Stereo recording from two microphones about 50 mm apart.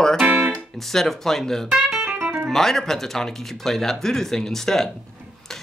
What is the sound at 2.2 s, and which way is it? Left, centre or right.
Music, right.